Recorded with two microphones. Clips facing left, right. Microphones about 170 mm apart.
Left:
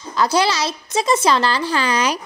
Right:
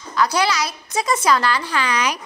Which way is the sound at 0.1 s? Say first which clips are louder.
Left 2 dB; 30° left (ahead or behind).